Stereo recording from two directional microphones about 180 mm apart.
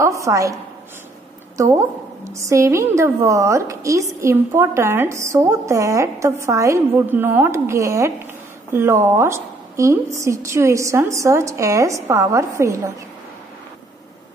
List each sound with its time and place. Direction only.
0.0 s a woman's voice: 15° right (ahead or behind)
1.6 s a woman's voice: 15° right (ahead or behind)